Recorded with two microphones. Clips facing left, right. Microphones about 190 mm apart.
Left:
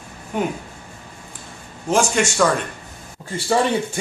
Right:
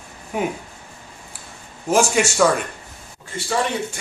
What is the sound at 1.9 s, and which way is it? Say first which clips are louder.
Speech: right 1 dB; 5° right (ahead or behind).